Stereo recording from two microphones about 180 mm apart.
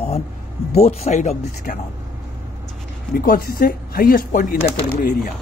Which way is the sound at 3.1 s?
55° left (ahead or behind).